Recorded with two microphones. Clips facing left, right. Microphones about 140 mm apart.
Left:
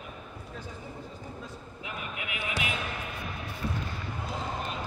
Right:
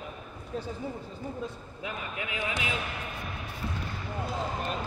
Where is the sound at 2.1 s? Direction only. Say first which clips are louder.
Right 1 dB; 30° right (ahead or behind).